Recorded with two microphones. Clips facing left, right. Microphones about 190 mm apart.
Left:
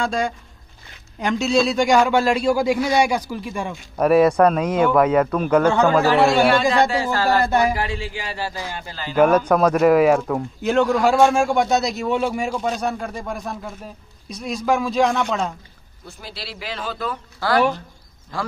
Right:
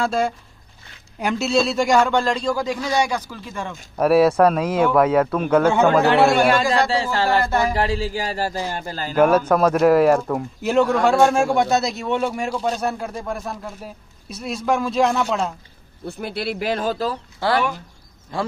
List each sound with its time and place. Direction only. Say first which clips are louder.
0.0 s a man's voice: right 2 dB; 5° right (ahead or behind); by 3.7 s 10° left (ahead or behind)
4.0 s speech: even; 5° right (ahead or behind)
6.9 s speech: even; 25° right (ahead or behind)
7.4 s a man's voice: left 2 dB; 15° left (ahead or behind)
7.7 s a man's voice: right 4 dB; 35° right (ahead or behind)
9.1 s speech: even; 5° right (ahead or behind)
16.1 s speech: right 10 dB; 60° right (ahead or behind); by 17.2 s 35° right (ahead or behind)
17.4 s speech: left 2 dB; 25° right (ahead or behind)